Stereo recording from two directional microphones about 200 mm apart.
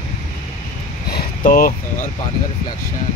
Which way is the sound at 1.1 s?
45° left (ahead or behind).